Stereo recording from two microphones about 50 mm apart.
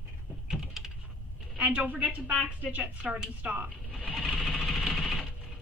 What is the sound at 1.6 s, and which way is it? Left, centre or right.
Speech, right.